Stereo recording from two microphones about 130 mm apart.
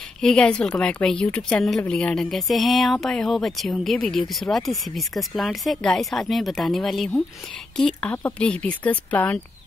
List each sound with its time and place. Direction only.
0.2 s a woman's voice: 5° left (ahead or behind)